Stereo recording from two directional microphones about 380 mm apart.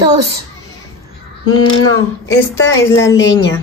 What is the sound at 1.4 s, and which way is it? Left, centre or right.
Speech, left.